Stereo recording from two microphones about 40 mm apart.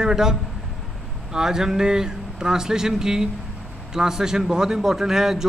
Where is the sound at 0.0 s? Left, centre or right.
Centre.